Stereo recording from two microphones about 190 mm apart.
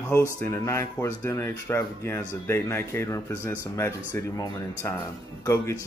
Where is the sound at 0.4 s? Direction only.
15° left (ahead or behind).